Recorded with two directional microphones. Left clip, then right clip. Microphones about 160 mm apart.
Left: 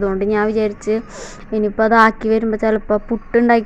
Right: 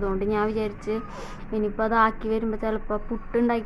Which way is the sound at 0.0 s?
30° left (ahead or behind).